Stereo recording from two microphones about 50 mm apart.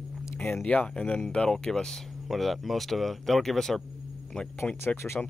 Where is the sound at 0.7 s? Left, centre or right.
Left.